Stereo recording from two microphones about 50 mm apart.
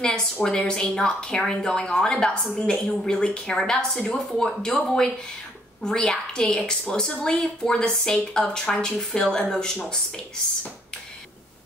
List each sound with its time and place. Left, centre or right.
0.0 s a woman's voice: centre